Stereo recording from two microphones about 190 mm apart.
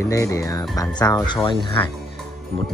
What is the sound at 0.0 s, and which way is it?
Speech, 15° left (ahead or behind).